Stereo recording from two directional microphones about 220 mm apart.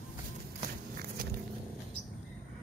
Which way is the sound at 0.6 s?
40° right (ahead or behind).